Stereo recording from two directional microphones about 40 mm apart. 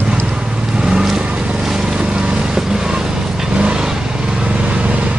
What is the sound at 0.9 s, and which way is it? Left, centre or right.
Vehicle, centre.